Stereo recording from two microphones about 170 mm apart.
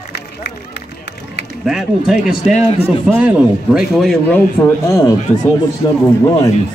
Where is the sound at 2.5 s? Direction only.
35° left (ahead or behind).